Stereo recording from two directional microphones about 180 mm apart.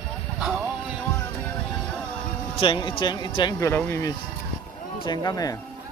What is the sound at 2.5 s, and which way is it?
Speech, 30° left (ahead or behind).